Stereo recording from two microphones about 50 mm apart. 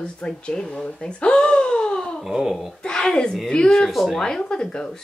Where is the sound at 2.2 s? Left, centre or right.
Centre.